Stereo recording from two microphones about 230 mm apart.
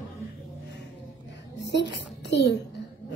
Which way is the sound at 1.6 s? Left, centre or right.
Left.